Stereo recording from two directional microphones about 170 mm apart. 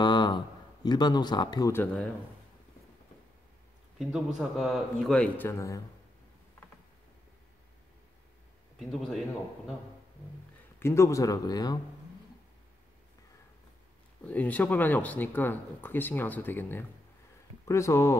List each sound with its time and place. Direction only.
0.0 s a sound: 25° left (ahead or behind)
0.8 s speech: 25° left (ahead or behind)
4.4 s speech: centre (ahead or behind); by 5.8 s 15° left (ahead or behind)
8.7 s speech: centre (ahead or behind)
10.8 s speech: 15° left (ahead or behind)
14.2 s speech: 10° left (ahead or behind)